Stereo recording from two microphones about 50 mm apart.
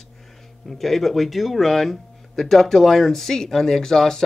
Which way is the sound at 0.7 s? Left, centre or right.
Centre.